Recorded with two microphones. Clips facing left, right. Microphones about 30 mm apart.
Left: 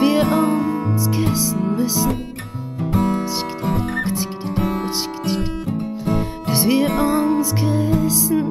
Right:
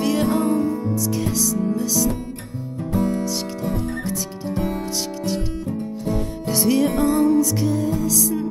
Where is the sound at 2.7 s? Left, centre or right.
Left.